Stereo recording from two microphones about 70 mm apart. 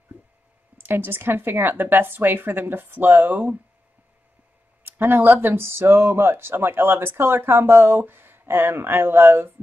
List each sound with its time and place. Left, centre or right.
0.7 s speech: right
4.8 s speech: right